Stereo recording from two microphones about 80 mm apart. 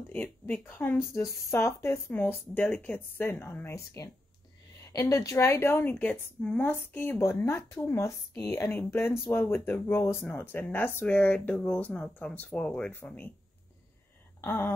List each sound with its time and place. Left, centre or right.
0.1 s speech: left
6.4 s speech: centre
6.7 s speech: left
12.1 s speech: centre
14.4 s a sound: left